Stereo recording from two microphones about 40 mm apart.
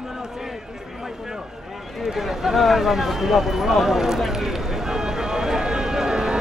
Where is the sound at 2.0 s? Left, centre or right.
Centre.